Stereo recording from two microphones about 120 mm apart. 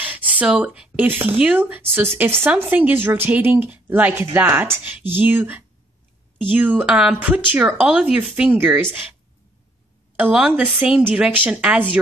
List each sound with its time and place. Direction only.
0.0 s a sound: 15° right (ahead or behind)
1.2 s speech: 15° right (ahead or behind)
10.3 s speech: 5° right (ahead or behind)